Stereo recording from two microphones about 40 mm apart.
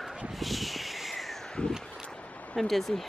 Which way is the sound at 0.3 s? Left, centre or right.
Centre.